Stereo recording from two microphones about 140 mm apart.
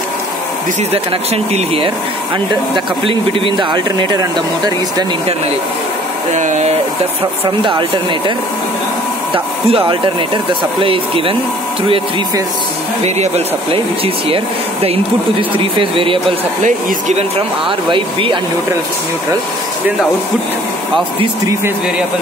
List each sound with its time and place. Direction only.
0.9 s speech: 45° right (ahead or behind); by 5.0 s 30° right (ahead or behind)
6.3 s speech: 60° right (ahead or behind)
7.4 s speech: 35° right (ahead or behind)
9.3 s speech: 40° right (ahead or behind)
13.0 s speech: 45° right (ahead or behind)
17.4 s speech: 35° right (ahead or behind)